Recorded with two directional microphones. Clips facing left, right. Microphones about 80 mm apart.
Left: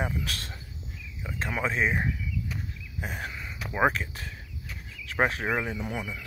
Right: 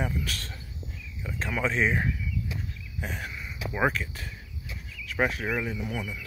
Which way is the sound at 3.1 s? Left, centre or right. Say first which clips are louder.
Left 1 dB; left.